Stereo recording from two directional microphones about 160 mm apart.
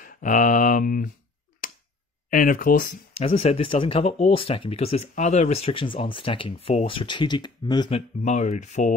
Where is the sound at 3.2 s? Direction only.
40° left (ahead or behind).